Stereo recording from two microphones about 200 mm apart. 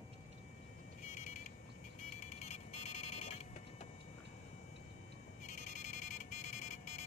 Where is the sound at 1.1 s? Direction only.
35° left (ahead or behind).